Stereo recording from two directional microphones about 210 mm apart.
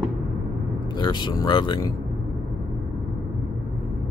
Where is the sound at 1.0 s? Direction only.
20° left (ahead or behind).